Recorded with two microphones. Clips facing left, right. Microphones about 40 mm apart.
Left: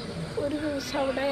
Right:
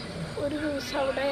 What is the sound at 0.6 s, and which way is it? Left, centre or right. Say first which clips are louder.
Speech: even; centre.